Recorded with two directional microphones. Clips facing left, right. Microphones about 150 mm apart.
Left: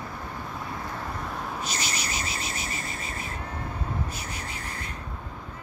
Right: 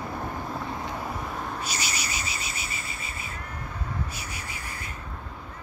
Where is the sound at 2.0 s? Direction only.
55° left (ahead or behind).